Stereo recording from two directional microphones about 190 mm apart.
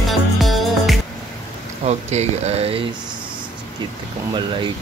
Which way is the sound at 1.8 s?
35° right (ahead or behind).